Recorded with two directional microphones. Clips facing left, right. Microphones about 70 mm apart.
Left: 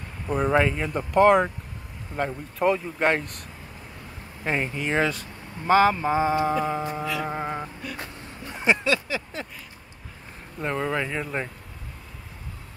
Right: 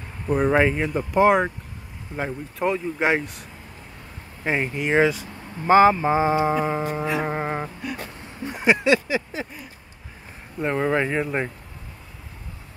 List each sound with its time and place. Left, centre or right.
0.3 s speech: centre
4.5 s speech: centre
5.7 s music: right
8.5 s speech: centre
10.6 s music: centre